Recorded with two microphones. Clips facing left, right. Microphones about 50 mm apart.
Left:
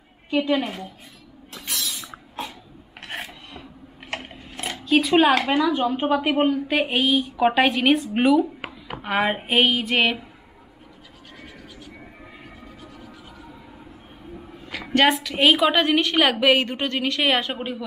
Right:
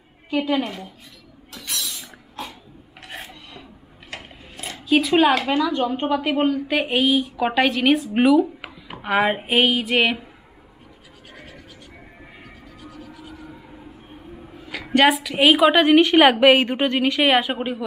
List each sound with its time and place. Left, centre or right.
0.3 s a woman's voice: centre
1.9 s a sound: centre
3.0 s filing: left
4.1 s a sound: left
4.8 s a woman's voice: centre
14.6 s a woman's voice: centre